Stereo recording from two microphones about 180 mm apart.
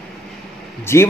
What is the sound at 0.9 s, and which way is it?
Speech, 15° left (ahead or behind).